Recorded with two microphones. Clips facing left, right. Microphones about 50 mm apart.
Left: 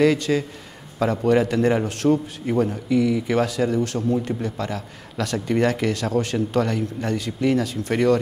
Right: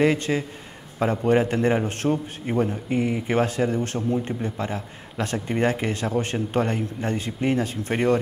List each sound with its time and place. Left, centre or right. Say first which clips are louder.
0.0 s speech: left 3 dB; right